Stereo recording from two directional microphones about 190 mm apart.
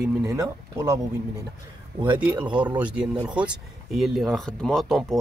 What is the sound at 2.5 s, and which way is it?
Speech, 25° right (ahead or behind).